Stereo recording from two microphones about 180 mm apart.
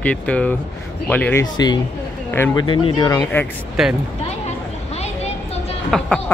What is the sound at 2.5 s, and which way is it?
Speech, 25° left (ahead or behind).